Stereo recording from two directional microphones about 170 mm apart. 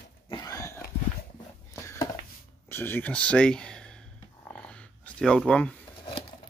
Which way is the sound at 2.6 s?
15° left (ahead or behind).